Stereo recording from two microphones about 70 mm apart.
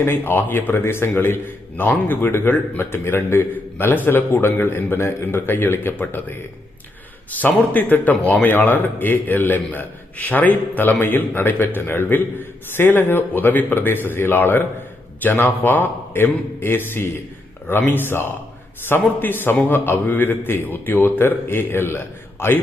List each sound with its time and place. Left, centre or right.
0.0 s a man's voice: left